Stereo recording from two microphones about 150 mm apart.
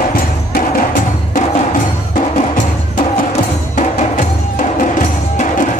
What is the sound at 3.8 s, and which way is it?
Music, 55° left (ahead or behind).